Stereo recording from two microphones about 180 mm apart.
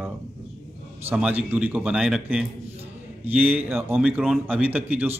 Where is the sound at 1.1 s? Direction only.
10° right (ahead or behind).